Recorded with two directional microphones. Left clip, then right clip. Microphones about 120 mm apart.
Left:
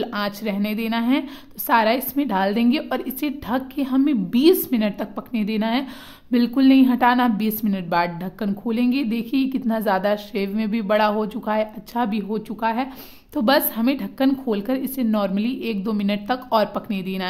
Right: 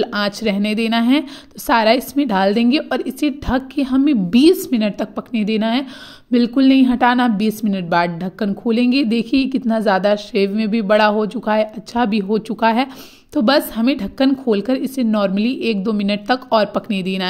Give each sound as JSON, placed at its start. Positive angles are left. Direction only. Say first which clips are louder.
{"t": 0.1, "sound": "a woman's voice", "louder": "right 6 dB", "side_deg": -40}
{"t": 13.3, "sound": "a woman's voice", "louder": "right 3 dB", "side_deg": -25}